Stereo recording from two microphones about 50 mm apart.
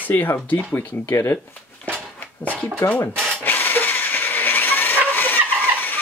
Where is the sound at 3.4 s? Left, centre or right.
Left.